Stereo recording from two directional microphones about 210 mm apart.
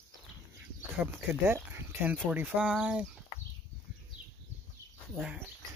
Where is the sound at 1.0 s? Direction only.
5° right (ahead or behind).